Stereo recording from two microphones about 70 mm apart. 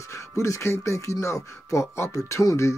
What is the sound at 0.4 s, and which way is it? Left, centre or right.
Speech, left.